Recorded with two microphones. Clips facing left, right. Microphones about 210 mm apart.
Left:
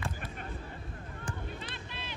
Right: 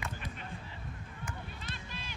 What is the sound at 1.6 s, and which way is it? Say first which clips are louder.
Run: left 2 dB; 45° right (ahead or behind).